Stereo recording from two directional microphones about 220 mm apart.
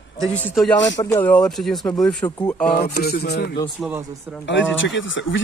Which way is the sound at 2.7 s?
45° left (ahead or behind).